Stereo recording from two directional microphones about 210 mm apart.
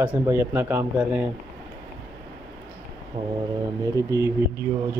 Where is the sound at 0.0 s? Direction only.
10° right (ahead or behind).